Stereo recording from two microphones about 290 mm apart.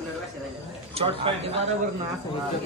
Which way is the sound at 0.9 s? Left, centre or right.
Centre.